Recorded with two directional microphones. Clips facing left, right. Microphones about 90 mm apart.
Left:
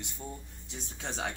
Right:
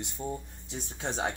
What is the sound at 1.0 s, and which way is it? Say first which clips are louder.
Speech: right 4 dB; 30° right (ahead or behind).